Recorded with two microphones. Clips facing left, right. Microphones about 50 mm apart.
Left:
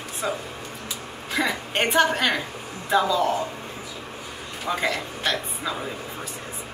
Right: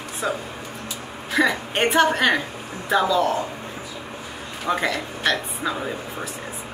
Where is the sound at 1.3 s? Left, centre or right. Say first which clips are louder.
Right 4 dB; centre.